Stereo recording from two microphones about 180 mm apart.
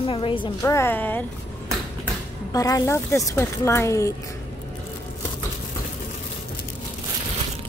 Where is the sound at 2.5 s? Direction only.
20° left (ahead or behind).